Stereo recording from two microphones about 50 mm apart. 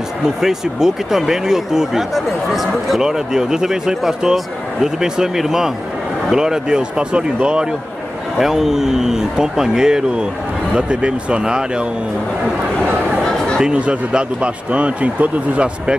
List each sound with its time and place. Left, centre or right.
0.4 s speech: centre
8.4 s speech: centre
13.6 s speech: right